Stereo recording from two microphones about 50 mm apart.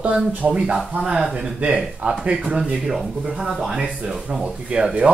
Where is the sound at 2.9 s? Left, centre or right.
Centre.